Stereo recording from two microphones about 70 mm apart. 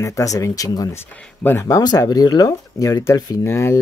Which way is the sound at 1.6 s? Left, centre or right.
Left.